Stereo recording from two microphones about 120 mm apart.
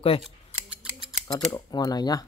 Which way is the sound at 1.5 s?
35° left (ahead or behind).